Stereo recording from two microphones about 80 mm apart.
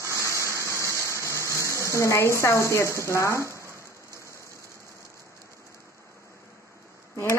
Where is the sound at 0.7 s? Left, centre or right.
Left.